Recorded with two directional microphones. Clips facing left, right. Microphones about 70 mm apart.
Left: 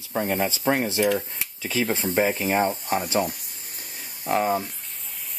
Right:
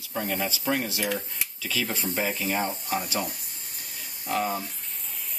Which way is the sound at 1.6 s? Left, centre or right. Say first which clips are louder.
Left 5 dB; left.